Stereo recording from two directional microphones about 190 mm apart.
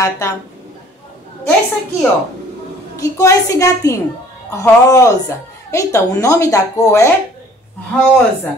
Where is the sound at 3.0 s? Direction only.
15° left (ahead or behind).